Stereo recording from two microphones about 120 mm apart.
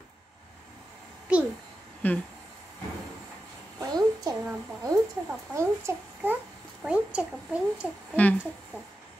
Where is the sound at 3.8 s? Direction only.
30° right (ahead or behind).